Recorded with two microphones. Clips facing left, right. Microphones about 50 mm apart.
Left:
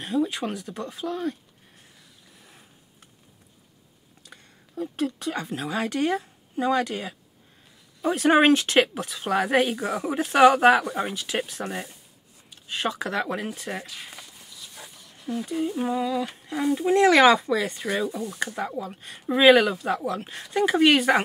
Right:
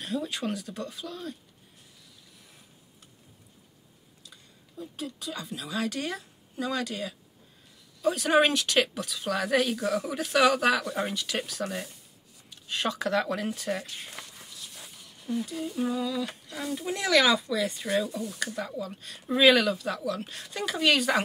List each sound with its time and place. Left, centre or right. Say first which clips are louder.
0.0 s speech: left 6 dB; centre
0.7 s speech: left 6 dB; left
4.2 s speech: left 5 dB; left
11.0 s speech: left 3 dB; centre
12.4 s speech: left 2 dB; centre
15.5 s speech: left 8 dB; left
17.9 s speech: left 1 dB; left